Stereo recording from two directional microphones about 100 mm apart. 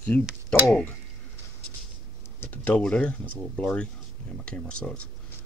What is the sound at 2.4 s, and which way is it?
Speech, 15° left (ahead or behind).